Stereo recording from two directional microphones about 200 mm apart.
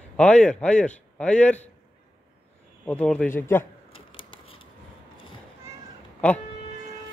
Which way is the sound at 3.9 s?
25° left (ahead or behind).